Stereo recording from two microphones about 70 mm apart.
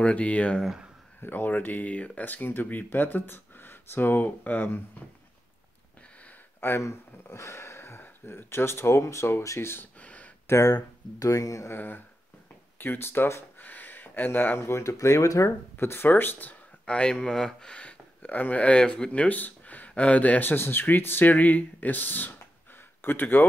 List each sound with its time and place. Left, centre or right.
0.0 s speech: centre
6.6 s speech: left
9.9 s a sound: centre
10.4 s speech: left
10.7 s speech: left
11.7 s speech: left
12.7 s a sound: left
14.6 s speech: left
15.8 s speech: left
16.8 s speech: centre
19.2 s a sound: left
19.9 s speech: centre